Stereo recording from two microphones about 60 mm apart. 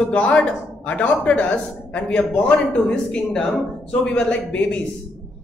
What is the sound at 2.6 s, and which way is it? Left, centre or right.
Speech, centre.